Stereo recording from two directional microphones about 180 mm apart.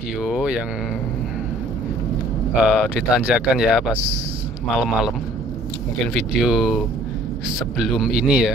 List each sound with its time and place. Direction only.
0.2 s speech: 5° right (ahead or behind)
2.5 s speech: 5° right (ahead or behind)
6.4 s speech: 5° right (ahead or behind)